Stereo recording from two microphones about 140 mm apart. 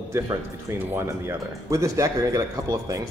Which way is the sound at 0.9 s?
20° right (ahead or behind).